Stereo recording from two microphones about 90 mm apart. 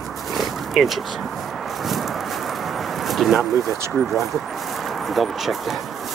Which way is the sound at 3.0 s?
Centre (ahead or behind).